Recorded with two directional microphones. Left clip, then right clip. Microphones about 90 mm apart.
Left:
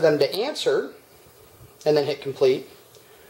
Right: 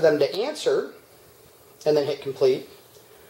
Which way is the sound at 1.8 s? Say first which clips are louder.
Left 1 dB; 25° left (ahead or behind).